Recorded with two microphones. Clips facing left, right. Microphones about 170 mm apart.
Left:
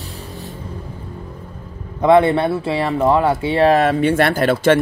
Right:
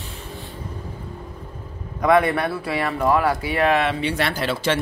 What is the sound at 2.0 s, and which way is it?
Speech, 25° left (ahead or behind).